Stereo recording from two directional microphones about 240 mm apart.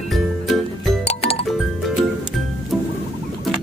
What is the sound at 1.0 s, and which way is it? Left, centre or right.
Music, left.